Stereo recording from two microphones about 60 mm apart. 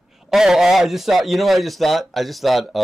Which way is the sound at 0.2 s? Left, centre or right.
Centre.